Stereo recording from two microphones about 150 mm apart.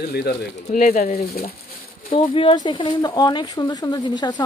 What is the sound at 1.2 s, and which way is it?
Speech, 90° left.